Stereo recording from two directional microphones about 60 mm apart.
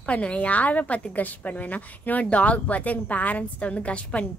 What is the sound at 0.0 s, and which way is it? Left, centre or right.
A woman's voice, centre.